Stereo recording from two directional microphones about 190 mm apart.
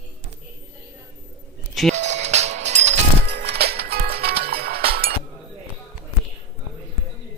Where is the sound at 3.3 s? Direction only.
60° right (ahead or behind).